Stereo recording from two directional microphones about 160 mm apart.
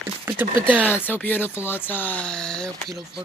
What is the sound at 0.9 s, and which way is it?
A woman's voice, 10° left (ahead or behind).